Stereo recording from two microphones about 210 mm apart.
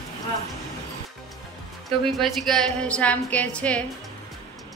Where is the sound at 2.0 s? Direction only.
Centre (ahead or behind).